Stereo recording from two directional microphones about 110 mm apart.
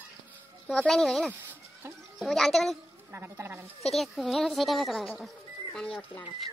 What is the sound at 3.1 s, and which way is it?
Speech, 20° right (ahead or behind).